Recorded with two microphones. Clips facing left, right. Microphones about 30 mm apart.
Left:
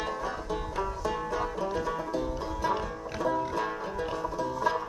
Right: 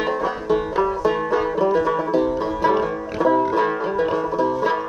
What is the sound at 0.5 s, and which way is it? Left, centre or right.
Banjo, right.